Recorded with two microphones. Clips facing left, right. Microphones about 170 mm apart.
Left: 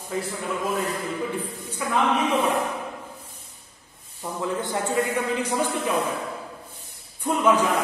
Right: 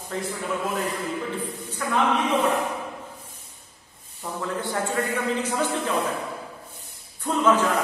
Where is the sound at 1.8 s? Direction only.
10° left (ahead or behind).